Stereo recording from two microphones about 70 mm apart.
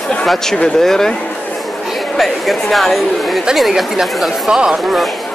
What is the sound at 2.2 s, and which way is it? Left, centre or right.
Speech, centre.